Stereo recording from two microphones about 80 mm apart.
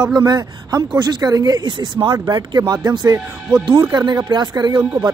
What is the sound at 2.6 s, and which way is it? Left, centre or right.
Speech, right.